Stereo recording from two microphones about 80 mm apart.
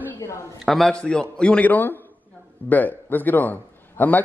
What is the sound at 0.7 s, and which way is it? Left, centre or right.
A man's voice, centre.